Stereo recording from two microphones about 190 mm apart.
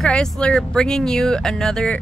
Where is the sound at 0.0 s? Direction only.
5° left (ahead or behind).